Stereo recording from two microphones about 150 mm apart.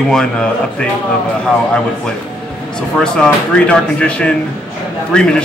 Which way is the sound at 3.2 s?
5° left (ahead or behind).